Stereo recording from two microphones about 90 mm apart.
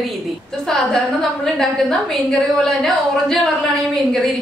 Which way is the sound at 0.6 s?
5° left (ahead or behind).